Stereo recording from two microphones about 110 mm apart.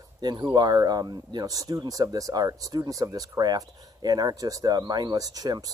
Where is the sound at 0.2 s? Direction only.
40° right (ahead or behind).